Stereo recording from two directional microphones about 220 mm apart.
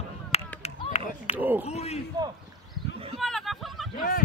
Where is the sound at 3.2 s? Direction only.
Centre (ahead or behind).